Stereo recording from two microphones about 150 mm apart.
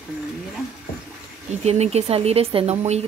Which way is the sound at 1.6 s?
45° right (ahead or behind).